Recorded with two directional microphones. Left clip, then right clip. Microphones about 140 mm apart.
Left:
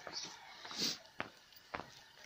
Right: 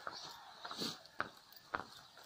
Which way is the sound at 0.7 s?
5° right (ahead or behind).